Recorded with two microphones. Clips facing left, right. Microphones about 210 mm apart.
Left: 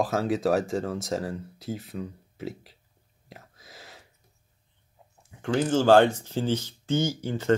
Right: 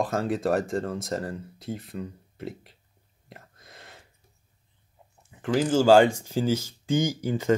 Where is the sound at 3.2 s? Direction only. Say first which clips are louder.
Left 1 dB; centre (ahead or behind).